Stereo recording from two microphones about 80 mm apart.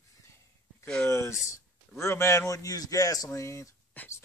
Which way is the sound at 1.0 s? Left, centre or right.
Left.